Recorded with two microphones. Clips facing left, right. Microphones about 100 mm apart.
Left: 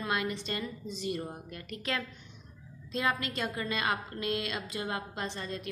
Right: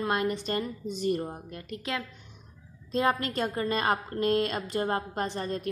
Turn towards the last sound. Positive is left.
turn(degrees=-45)  # may be behind; listen again after turning